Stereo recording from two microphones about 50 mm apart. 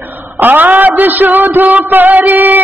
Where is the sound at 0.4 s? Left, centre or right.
Right.